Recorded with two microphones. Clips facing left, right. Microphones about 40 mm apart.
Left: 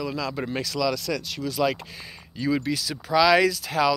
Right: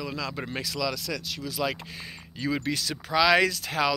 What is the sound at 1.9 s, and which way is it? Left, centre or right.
Speech, right.